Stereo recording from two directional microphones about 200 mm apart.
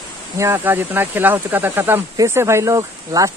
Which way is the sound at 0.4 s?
10° right (ahead or behind).